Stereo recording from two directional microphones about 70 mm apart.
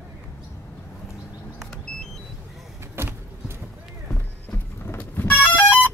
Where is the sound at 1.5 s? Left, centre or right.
Centre.